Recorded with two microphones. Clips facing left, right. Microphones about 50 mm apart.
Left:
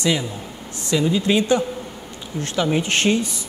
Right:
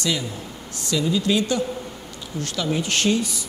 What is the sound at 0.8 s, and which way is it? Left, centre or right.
A man's voice, left.